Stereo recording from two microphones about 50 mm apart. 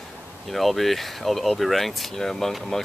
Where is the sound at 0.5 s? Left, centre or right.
Centre.